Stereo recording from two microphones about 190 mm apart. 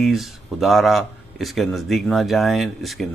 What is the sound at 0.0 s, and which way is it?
A man's voice, centre (ahead or behind).